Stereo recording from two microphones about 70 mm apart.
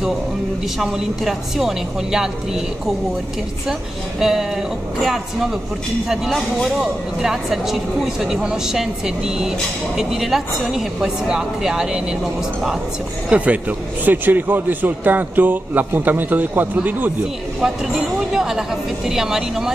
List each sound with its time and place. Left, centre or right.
0.7 s speech: centre
4.2 s a man's voice: centre
13.3 s a man's voice: centre
18.3 s speech: centre